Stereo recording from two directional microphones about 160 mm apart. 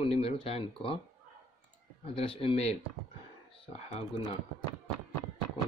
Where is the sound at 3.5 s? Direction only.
35° left (ahead or behind).